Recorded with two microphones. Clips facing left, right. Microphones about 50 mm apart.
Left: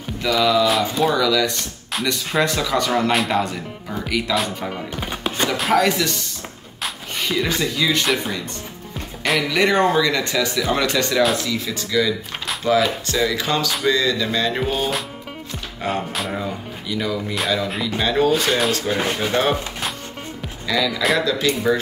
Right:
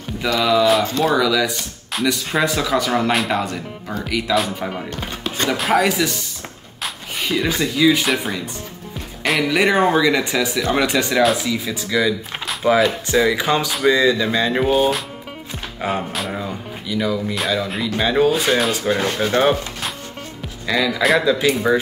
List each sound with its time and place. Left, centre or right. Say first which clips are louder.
0.3 s speech: right 1 dB; centre
4.9 s music: left 1 dB; centre
5.5 s speech: right 1 dB; centre
20.6 s speech: right 2 dB; centre